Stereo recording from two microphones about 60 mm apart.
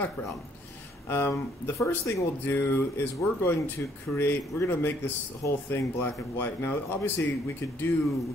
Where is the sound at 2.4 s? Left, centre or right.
Left.